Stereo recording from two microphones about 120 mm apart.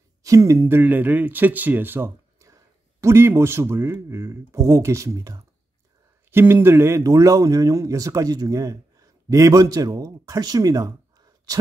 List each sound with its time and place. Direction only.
0.2 s speech: 25° right (ahead or behind)